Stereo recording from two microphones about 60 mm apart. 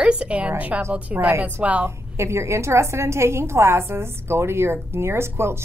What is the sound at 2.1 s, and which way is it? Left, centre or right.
A woman's voice, right.